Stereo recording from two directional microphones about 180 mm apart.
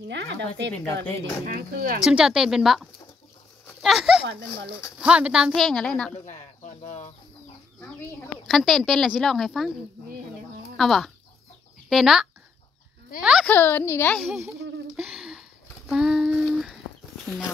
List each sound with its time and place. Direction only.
0.1 s speech: 75° right (ahead or behind)
1.4 s speech: 55° right (ahead or behind)
2.0 s a woman's voice: 5° right (ahead or behind)
6.2 s speech: 40° left (ahead or behind)
8.5 s a woman's voice: centre (ahead or behind)
10.8 s a woman's voice: centre (ahead or behind)
13.5 s a child's voice: 10° left (ahead or behind)
14.3 s speech: 15° right (ahead or behind)
15.0 s a sound: centre (ahead or behind)